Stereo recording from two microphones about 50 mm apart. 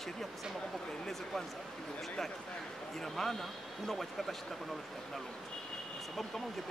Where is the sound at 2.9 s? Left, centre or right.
Centre.